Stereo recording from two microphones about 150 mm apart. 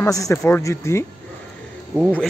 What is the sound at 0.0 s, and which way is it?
Speech, 20° left (ahead or behind).